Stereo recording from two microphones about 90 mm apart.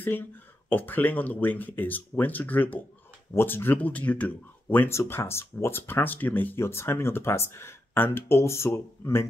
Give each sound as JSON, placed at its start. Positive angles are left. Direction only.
{"t": 0.7, "sound": "speech", "side_deg": 20}